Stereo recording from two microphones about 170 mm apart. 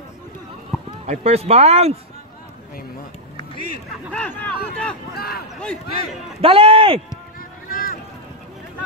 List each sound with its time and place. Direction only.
0.7 s run: centre (ahead or behind)
1.0 s speech: 40° right (ahead or behind)
4.1 s speech: 10° left (ahead or behind)
5.1 s speech: 65° left (ahead or behind)
6.4 s speech: 30° right (ahead or behind)
7.3 s a sound: 55° left (ahead or behind)